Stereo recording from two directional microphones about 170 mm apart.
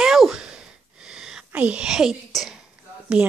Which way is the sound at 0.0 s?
5° right (ahead or behind).